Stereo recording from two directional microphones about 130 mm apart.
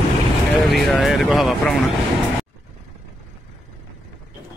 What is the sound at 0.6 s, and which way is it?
Speech, centre (ahead or behind).